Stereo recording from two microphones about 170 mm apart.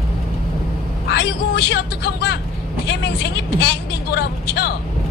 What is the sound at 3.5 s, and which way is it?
Vehicle, 70° left (ahead or behind).